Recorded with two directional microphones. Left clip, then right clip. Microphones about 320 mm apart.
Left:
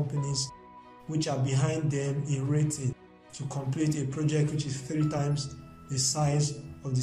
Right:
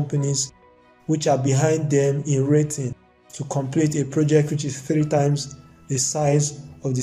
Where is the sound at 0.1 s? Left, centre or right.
Right.